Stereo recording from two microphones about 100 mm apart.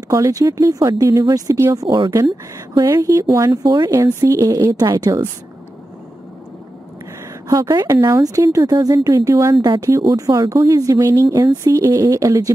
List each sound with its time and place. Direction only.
0.1 s speech: 35° right (ahead or behind)
3.4 s speech: 45° right (ahead or behind)
7.4 s speech: 35° right (ahead or behind)